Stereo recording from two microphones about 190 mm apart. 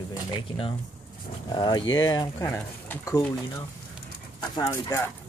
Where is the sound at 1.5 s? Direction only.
25° left (ahead or behind).